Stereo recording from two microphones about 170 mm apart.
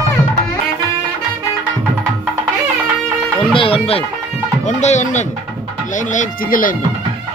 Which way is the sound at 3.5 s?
35° left (ahead or behind).